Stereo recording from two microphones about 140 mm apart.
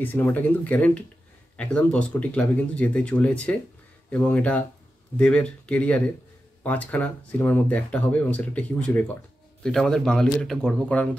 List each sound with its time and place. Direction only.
0.0 s a man's voice: 15° left (ahead or behind)